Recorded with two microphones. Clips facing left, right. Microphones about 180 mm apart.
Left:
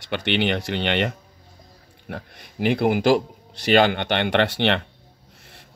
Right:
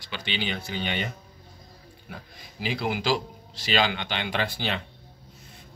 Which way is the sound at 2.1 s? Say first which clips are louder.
Left 9 dB; 65° left (ahead or behind).